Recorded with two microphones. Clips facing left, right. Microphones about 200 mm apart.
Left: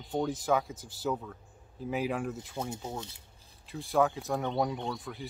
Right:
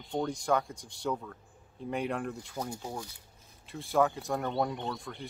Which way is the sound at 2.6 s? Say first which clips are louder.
Left 1 dB; 25° left (ahead or behind).